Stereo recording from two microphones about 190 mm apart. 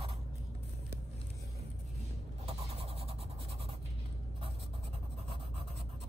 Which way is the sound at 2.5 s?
30° right (ahead or behind).